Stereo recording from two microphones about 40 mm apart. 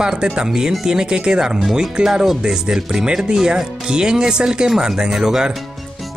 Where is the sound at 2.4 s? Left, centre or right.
Centre.